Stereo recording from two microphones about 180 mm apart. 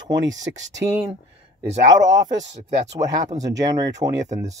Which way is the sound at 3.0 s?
20° right (ahead or behind).